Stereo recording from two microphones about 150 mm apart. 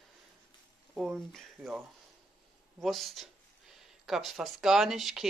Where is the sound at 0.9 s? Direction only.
5° right (ahead or behind).